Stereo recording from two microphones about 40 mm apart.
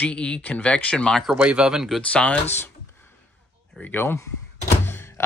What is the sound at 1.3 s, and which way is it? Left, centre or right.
Speech, right.